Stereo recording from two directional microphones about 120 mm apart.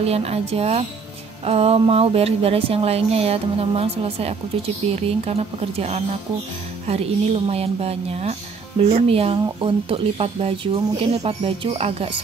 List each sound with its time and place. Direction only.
0.0 s speech: 60° right (ahead or behind)